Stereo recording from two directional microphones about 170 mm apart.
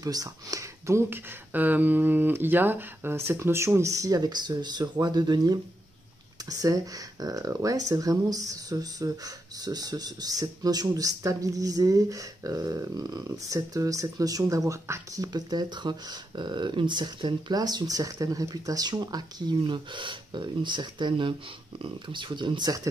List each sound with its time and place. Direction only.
0.0 s speech: 20° right (ahead or behind)
6.6 s speech: 20° right (ahead or behind)